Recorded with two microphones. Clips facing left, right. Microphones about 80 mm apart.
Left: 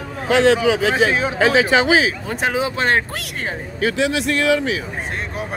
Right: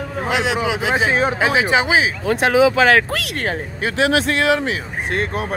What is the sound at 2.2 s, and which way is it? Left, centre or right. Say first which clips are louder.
Speech: right 7 dB; right.